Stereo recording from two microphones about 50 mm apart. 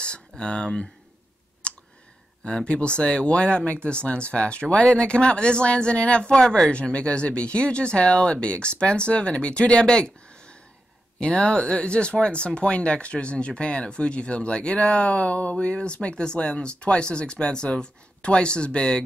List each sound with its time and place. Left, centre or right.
0.0 s speech: centre
1.6 s clicking: centre
2.4 s speech: centre
6.3 s speech: centre
6.7 s speech: left